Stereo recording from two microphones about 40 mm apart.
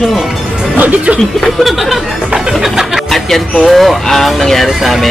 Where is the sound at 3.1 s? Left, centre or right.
Centre.